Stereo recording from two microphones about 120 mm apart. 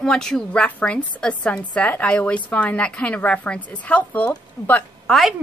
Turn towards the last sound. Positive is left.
turn(degrees=0)  # may be behind; listen again after turning